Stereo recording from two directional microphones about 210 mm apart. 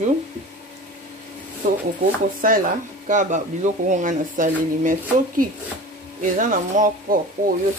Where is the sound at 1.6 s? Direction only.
40° right (ahead or behind).